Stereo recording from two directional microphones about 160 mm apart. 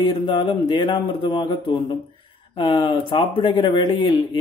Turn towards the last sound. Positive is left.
turn(degrees=30)  # may be behind; listen again after turning